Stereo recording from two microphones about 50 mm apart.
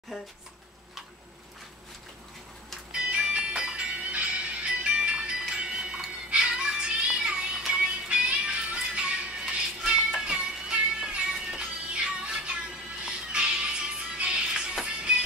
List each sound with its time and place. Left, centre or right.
2.9 s music: right
5.5 s chime: centre
6.3 s music: centre